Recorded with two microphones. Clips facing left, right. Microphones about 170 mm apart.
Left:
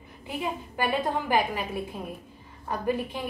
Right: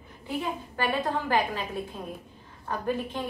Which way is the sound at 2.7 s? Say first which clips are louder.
Left 2 dB; 10° left (ahead or behind).